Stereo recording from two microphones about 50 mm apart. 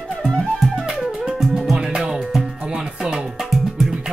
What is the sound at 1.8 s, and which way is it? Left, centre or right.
Music, centre.